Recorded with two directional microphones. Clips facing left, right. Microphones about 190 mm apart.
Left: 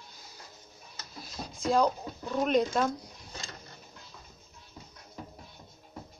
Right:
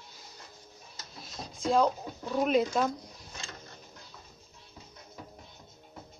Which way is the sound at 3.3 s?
35° left (ahead or behind).